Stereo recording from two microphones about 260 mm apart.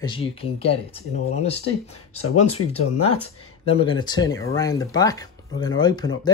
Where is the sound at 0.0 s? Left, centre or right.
Centre.